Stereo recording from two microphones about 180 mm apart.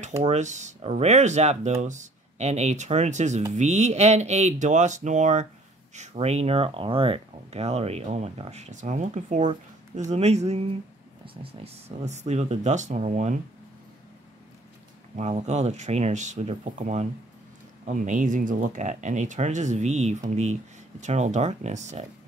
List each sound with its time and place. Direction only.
0.2 s speech: 40° right (ahead or behind)
15.1 s speech: 35° right (ahead or behind)